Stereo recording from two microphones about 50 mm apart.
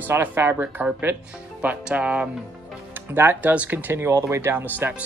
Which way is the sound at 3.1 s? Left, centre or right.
Right.